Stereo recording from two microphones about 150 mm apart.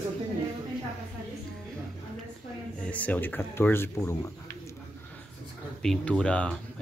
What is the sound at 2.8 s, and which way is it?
Speech, 10° left (ahead or behind).